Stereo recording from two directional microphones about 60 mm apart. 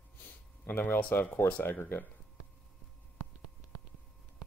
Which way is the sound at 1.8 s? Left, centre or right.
Left.